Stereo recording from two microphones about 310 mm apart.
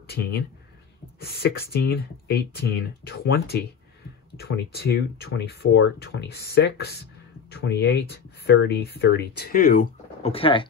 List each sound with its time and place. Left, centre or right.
1.2 s speech: left